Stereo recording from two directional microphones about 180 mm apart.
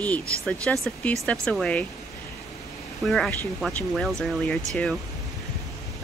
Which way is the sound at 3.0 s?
Centre (ahead or behind).